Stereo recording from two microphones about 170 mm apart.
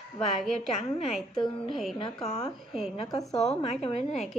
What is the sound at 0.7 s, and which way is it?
A woman's voice, 35° left (ahead or behind).